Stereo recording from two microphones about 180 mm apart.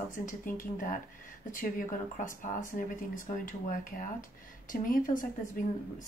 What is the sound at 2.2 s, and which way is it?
Speech, 45° left (ahead or behind).